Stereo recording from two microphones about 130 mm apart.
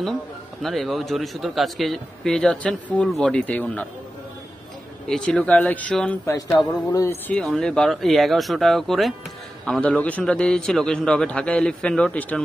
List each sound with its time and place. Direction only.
0.6 s a man's voice: centre (ahead or behind)
5.0 s a man's voice: 5° left (ahead or behind)
6.2 s music: 25° left (ahead or behind)
6.5 s a man's voice: 5° left (ahead or behind)
6.9 s music: 25° left (ahead or behind)
7.2 s a man's voice: 10° left (ahead or behind)